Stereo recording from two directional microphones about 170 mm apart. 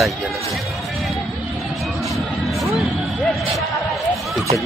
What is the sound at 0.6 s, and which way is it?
Music, centre (ahead or behind).